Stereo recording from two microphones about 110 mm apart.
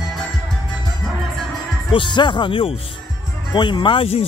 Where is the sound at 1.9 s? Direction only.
50° left (ahead or behind).